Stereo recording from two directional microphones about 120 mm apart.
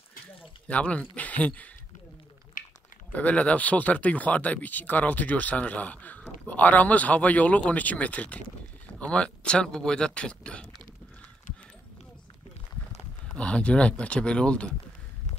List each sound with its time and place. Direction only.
0.7 s speech: 10° left (ahead or behind)
2.6 s a sound: 90° left
3.1 s speech: 10° left (ahead or behind)
13.4 s speech: 10° left (ahead or behind)